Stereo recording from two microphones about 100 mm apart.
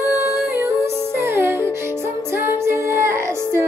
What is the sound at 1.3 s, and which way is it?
Music, 25° right (ahead or behind).